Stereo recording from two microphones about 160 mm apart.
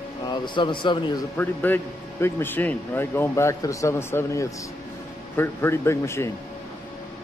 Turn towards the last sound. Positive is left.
turn(degrees=15)  # may be behind; listen again after turning